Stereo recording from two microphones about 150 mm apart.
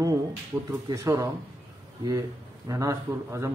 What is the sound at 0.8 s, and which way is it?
Speech, 25° right (ahead or behind).